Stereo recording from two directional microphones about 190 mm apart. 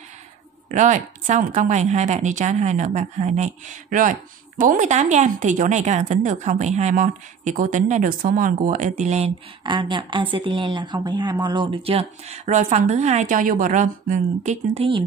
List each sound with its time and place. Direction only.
0.7 s a woman's voice: 40° right (ahead or behind)
9.6 s a woman's voice: 25° right (ahead or behind)